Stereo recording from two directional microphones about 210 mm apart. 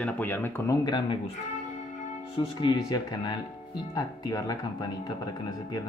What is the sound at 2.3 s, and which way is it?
Speech, 20° left (ahead or behind).